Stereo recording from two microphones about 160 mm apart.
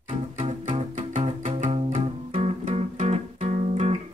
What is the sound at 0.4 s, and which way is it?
Music, 45° right (ahead or behind).